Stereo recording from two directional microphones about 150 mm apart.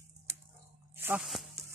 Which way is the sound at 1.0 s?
5° right (ahead or behind).